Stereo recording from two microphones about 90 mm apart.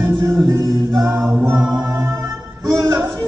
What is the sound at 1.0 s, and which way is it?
A capella, 25° right (ahead or behind).